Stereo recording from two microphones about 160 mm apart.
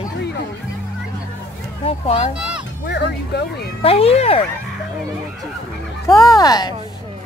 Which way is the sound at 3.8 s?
40° left (ahead or behind).